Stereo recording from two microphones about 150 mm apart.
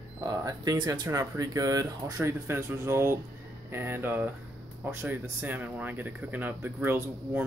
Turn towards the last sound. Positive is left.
turn(degrees=-15)  # may be behind; listen again after turning